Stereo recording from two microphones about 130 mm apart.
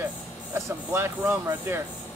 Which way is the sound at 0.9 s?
15° right (ahead or behind).